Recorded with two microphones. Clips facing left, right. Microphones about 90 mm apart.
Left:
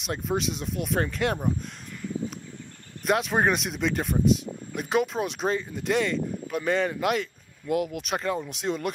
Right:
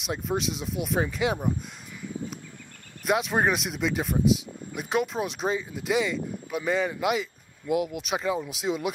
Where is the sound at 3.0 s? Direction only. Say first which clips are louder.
Left 1 dB; centre (ahead or behind).